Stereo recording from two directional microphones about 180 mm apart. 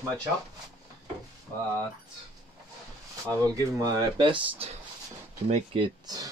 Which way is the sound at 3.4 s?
20° right (ahead or behind).